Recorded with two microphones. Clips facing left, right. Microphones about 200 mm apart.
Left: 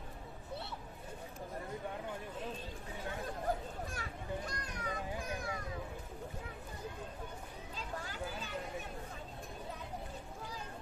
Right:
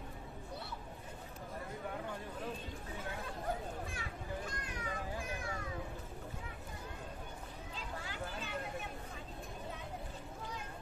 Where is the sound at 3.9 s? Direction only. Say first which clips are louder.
Left 2 dB; 40° left (ahead or behind).